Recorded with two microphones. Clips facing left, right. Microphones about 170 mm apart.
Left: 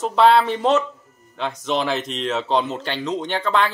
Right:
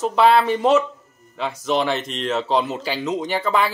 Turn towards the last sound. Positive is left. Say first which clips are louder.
# even
turn(degrees=-5)  # may be behind; listen again after turning